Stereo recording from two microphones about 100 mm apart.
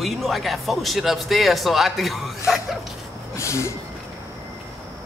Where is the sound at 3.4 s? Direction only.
30° left (ahead or behind).